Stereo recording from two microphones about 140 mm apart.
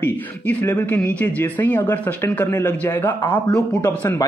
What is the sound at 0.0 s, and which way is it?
A man's voice, 15° left (ahead or behind).